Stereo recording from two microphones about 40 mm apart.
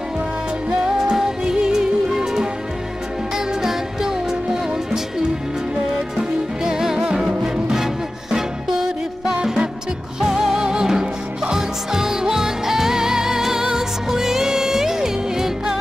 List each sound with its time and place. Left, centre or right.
0.8 s music: centre
6.6 s music: centre
9.4 s music: centre